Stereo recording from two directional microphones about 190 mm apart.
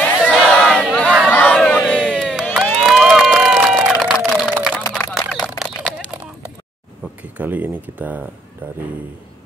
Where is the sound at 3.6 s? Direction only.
Centre (ahead or behind).